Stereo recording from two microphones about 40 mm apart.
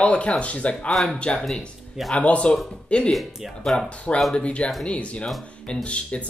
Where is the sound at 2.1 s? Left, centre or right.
Left.